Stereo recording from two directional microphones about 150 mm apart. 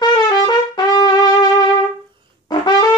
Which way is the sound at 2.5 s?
25° left (ahead or behind).